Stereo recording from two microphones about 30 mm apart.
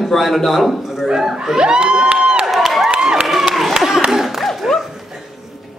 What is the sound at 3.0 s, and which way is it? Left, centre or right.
Crowd, right.